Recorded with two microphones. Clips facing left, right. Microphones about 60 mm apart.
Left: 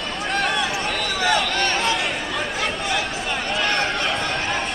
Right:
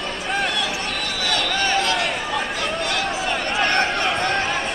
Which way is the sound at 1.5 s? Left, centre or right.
Centre.